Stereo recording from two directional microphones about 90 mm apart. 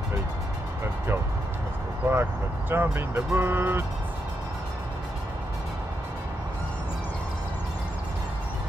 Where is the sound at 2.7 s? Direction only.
30° right (ahead or behind).